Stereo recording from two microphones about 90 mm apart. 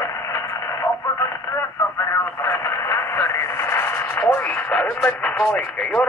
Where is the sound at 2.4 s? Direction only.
30° left (ahead or behind).